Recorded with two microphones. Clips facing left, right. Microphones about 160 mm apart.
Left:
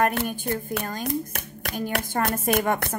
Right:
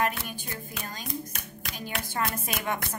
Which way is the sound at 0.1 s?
60° left (ahead or behind).